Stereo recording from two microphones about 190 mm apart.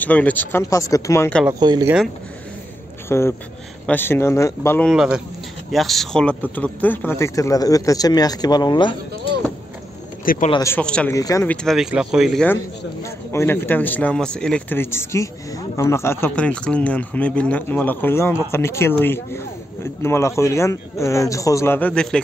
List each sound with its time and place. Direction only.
0.0 s speech: 10° left (ahead or behind)
1.5 s speech: 20° right (ahead or behind)
3.1 s speech: 15° left (ahead or behind)
4.8 s speech: 5° right (ahead or behind); by 9.4 s 25° left (ahead or behind)
10.2 s a man's voice: 45° left (ahead or behind)
10.5 s speech: 15° left (ahead or behind)
11.1 s speech: 15° left (ahead or behind)
11.5 s speech: centre (ahead or behind)
13.0 s speech: 15° left (ahead or behind)